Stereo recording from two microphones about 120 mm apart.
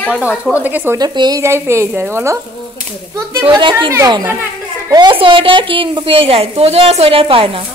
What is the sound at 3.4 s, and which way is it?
Speech, 40° right (ahead or behind).